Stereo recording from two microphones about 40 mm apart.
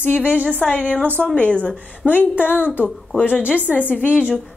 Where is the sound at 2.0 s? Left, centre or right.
Left.